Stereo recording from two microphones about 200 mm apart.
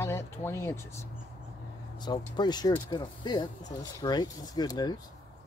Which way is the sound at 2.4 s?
20° left (ahead or behind).